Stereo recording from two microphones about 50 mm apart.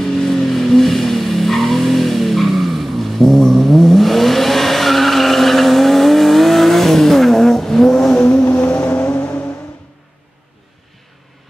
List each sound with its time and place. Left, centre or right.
0.0 s vehicle: centre
8.6 s vehicle: left